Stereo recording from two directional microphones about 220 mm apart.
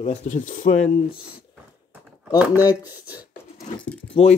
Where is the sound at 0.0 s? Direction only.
30° left (ahead or behind).